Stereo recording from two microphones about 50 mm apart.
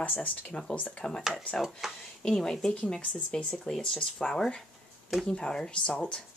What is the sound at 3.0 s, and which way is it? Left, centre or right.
Speech, left.